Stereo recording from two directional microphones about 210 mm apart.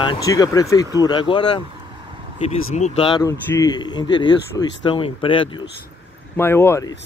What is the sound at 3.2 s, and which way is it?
Speech, 15° left (ahead or behind).